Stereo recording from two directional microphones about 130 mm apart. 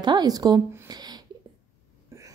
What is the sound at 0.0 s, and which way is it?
Speech, 35° right (ahead or behind).